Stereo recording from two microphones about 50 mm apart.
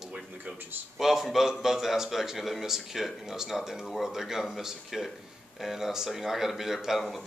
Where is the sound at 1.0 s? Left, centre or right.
Centre.